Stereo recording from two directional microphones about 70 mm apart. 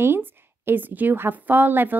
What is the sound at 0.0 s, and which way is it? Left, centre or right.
A woman's voice, right.